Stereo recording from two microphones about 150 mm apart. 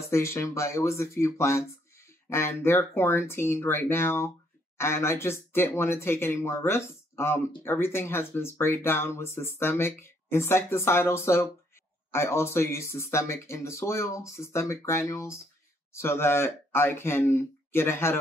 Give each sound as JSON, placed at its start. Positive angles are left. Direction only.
{"t": 0.1, "sound": "speech", "side_deg": 20}